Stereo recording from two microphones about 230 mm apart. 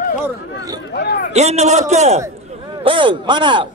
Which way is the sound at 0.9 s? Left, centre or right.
Left.